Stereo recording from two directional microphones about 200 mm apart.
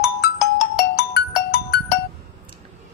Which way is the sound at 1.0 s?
50° left (ahead or behind).